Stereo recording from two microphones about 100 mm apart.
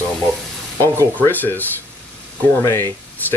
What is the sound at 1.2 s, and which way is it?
Speech, 20° left (ahead or behind).